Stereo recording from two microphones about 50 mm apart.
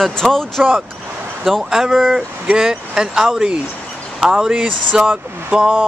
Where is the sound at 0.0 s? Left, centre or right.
Centre.